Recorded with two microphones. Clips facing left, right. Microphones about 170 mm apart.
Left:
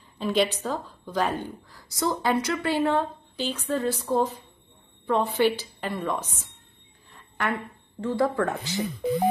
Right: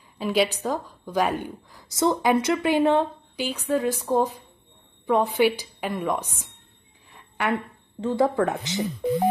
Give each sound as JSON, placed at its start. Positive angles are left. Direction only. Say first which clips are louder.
{"t": 0.2, "sound": "a woman's voice", "louder": "right 1 dB", "side_deg": -5}
{"t": 7.1, "sound": "a sound", "louder": "right 2 dB", "side_deg": -10}
{"t": 8.0, "sound": "speech", "louder": "right 3 dB", "side_deg": -20}